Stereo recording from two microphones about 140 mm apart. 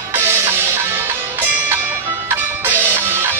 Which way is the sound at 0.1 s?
15° right (ahead or behind).